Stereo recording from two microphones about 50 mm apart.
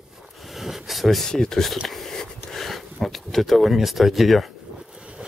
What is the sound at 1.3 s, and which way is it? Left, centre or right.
Speech, centre.